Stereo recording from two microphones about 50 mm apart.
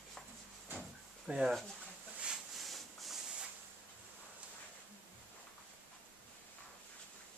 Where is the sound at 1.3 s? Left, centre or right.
Centre.